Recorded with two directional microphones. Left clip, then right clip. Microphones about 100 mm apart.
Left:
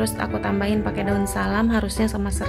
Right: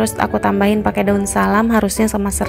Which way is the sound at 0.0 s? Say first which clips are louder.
Right 8 dB; 45° right (ahead or behind).